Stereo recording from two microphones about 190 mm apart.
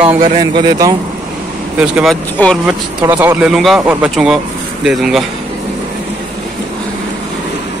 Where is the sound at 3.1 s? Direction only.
10° right (ahead or behind).